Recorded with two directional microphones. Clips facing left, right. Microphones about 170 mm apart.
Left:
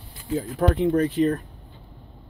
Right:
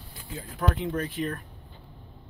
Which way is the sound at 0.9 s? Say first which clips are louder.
Left 10 dB; 35° left (ahead or behind).